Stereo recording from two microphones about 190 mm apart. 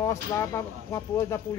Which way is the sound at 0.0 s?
15° left (ahead or behind).